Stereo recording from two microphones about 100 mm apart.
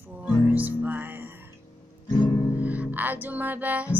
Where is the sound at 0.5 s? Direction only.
15° right (ahead or behind).